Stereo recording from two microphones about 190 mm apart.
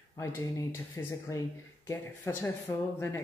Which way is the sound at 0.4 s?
15° left (ahead or behind).